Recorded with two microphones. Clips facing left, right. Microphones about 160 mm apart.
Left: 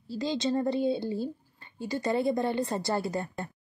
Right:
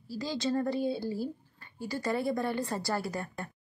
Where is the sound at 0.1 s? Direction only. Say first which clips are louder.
Left 3 dB; 25° left (ahead or behind).